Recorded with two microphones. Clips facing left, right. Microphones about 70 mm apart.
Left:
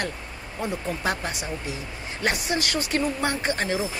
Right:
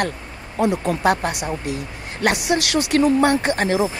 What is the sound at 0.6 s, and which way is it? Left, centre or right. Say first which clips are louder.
Speech: right 9 dB; right.